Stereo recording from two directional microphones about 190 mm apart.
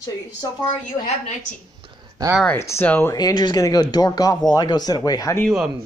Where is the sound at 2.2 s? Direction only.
20° right (ahead or behind).